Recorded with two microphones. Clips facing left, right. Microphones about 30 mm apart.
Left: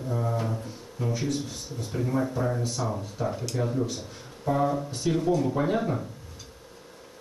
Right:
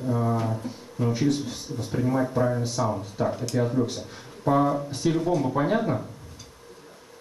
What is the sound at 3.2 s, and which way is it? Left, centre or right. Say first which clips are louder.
Speech: right 4 dB; right.